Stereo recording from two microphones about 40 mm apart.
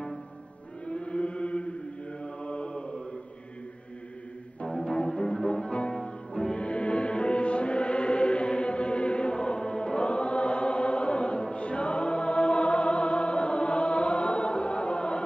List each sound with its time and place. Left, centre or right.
0.8 s chant: left
2.2 s mantra: left
4.6 s music: left